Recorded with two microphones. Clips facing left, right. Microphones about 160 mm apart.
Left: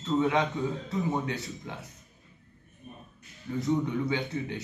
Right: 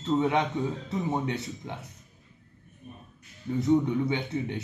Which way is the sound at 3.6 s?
25° right (ahead or behind).